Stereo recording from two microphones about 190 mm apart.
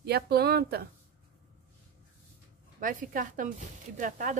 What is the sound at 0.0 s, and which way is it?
Speech, 60° right (ahead or behind).